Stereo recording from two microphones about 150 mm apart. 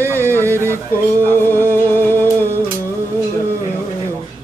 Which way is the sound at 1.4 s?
15° left (ahead or behind).